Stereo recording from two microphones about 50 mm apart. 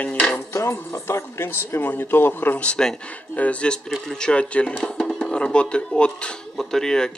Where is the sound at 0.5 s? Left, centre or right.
Left.